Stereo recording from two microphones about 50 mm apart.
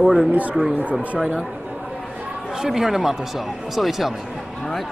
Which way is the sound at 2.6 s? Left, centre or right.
Centre.